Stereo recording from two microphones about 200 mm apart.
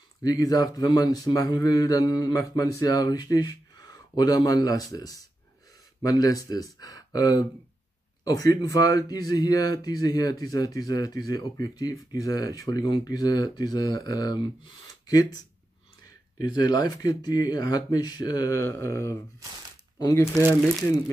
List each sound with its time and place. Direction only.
0.2 s speech: 20° left (ahead or behind)